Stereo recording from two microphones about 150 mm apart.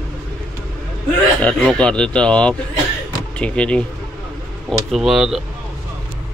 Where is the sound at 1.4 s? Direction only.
5° left (ahead or behind).